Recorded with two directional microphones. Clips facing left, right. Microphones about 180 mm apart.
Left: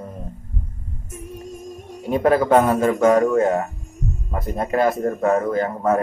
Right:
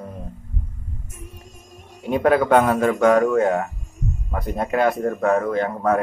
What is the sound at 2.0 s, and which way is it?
A man's voice, centre (ahead or behind).